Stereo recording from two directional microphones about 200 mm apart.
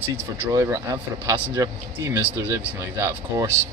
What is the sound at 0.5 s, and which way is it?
Speech, 15° right (ahead or behind).